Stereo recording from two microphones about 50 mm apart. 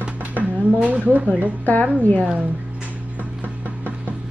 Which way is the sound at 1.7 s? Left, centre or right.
Left.